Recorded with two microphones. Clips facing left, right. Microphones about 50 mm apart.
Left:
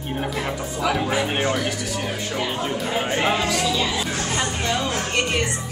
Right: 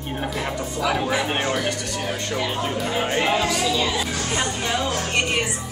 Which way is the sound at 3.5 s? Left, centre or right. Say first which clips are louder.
Even; centre.